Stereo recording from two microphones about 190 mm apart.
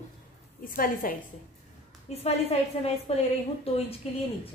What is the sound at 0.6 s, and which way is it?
Speech, 50° left (ahead or behind).